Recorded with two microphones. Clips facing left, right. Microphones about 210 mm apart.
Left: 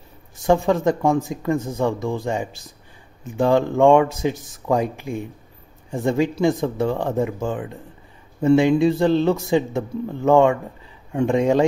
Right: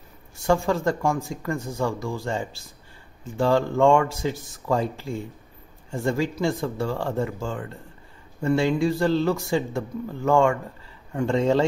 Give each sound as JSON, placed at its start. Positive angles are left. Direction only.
{"t": 0.4, "sound": "speech", "side_deg": 20}